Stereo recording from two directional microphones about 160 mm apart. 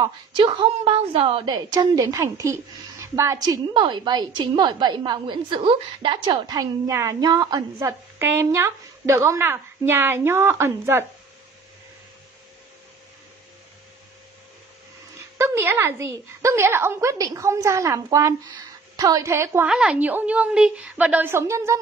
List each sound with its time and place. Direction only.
0.0 s a woman's voice: 30° right (ahead or behind)
15.3 s a woman's voice: 15° right (ahead or behind)
19.7 s a woman's voice: 5° right (ahead or behind)